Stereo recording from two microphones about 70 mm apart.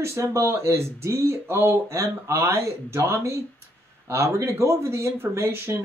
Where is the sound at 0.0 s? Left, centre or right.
Right.